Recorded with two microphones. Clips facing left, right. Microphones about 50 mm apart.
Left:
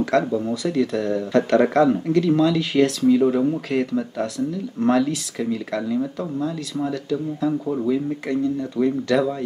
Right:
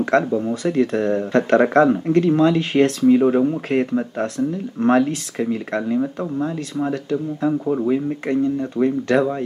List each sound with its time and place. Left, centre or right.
0.1 s speech: right